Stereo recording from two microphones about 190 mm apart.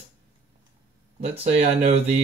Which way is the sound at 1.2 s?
35° right (ahead or behind).